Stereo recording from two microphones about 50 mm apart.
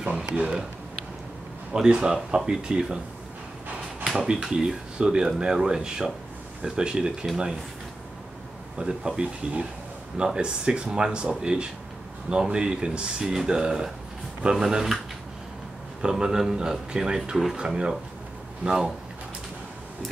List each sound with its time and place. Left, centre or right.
0.3 s speech: centre
1.7 s speech: centre
4.0 s speech: centre
8.7 s speech: centre
16.0 s speech: centre